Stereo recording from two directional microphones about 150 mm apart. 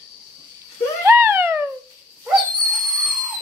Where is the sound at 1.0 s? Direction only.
15° right (ahead or behind).